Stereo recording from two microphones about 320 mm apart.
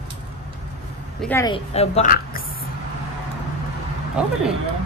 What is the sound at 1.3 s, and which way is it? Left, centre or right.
Speech, centre.